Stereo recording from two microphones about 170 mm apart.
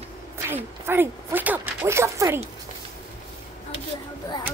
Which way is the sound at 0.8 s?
10° right (ahead or behind).